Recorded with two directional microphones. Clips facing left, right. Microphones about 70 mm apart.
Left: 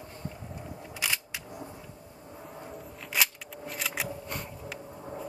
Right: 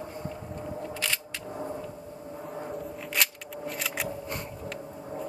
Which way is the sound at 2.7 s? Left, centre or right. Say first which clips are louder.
Even; centre.